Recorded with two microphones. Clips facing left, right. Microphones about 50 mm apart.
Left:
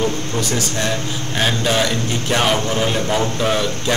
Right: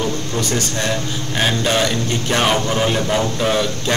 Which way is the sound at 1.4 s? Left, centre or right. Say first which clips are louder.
Even; centre.